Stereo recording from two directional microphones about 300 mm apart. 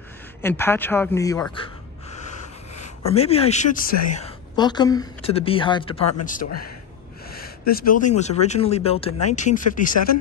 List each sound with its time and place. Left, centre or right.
0.4 s speech: centre
2.7 s speech: left